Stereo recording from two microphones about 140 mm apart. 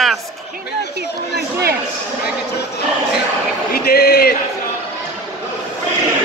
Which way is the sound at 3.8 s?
90° left.